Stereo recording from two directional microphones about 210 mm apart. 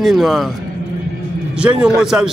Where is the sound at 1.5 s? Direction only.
5° right (ahead or behind).